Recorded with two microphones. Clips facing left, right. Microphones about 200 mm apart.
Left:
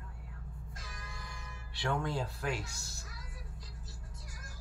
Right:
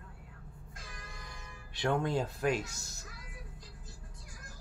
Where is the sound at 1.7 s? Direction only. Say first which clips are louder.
Right 4 dB; 20° right (ahead or behind).